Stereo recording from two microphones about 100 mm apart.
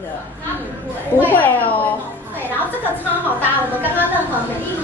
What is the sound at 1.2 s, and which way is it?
Speech, 15° left (ahead or behind).